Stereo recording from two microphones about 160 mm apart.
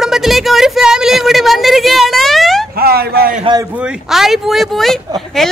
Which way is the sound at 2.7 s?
75° right (ahead or behind).